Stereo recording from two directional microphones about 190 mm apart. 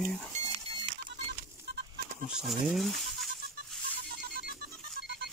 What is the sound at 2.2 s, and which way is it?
Speech, 5° right (ahead or behind).